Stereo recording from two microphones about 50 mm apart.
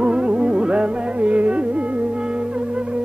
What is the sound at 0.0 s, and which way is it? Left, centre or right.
Music, right.